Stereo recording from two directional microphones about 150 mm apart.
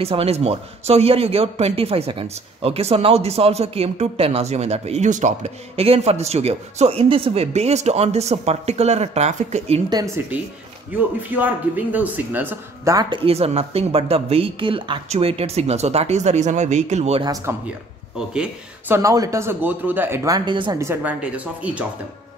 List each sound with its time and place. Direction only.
0.0 s speech: 40° right (ahead or behind)
10.3 s speech: 10° right (ahead or behind)
12.9 s speech: 35° right (ahead or behind)
17.5 s speech: 15° right (ahead or behind)
18.9 s speech: 20° right (ahead or behind)
20.2 s speech: 30° right (ahead or behind)
20.7 s speech: 15° right (ahead or behind)